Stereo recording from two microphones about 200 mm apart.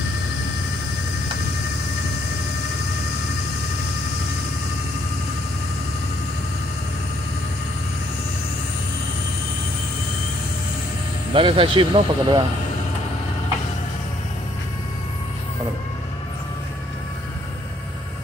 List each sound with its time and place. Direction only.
11.3 s speech: 25° right (ahead or behind)